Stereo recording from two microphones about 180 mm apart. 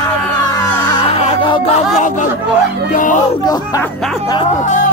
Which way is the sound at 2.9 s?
45° left (ahead or behind).